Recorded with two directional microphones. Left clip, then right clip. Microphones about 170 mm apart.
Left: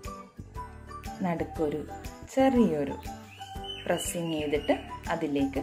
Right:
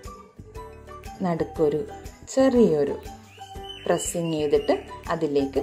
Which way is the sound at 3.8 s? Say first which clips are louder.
Right 6 dB; 30° right (ahead or behind).